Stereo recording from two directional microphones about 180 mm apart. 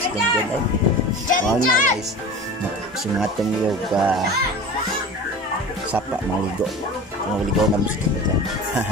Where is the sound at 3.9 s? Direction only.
Centre (ahead or behind).